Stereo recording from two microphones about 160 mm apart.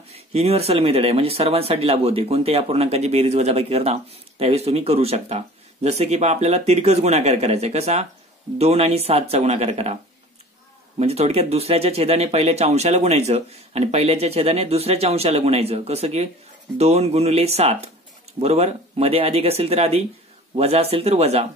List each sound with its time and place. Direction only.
0.1 s speech: 40° right (ahead or behind)
11.0 s speech: 40° right (ahead or behind)